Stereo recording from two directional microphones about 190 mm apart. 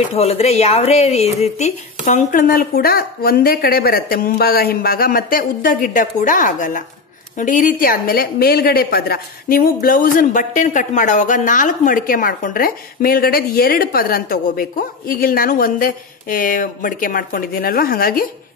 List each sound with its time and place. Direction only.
0.1 s a woman's voice: 35° left (ahead or behind); by 18.2 s 50° left (ahead or behind)